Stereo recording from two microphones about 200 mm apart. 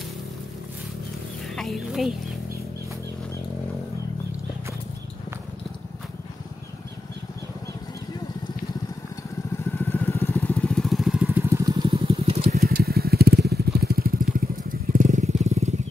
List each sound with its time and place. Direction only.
1.5 s speech: centre (ahead or behind)
9.7 s vehicle: 10° left (ahead or behind); by 12.5 s 30° right (ahead or behind)
12.5 s vehicle: 50° right (ahead or behind); by 15.7 s 35° right (ahead or behind)